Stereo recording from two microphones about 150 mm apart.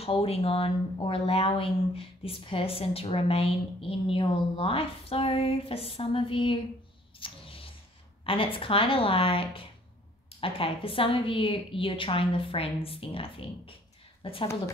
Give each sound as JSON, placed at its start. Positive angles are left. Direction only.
{"t": 0.0, "sound": "speech", "side_deg": 40}
{"t": 7.2, "sound": "a sound", "side_deg": 35}
{"t": 8.2, "sound": "speech", "side_deg": 35}